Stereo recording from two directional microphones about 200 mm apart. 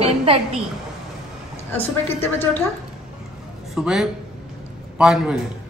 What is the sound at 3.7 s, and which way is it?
A woman's voice, centre (ahead or behind).